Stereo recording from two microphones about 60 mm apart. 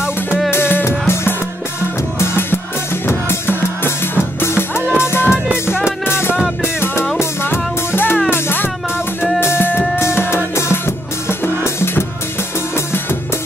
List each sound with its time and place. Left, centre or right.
0.5 s music: left
5.3 s music: centre
6.0 s music: left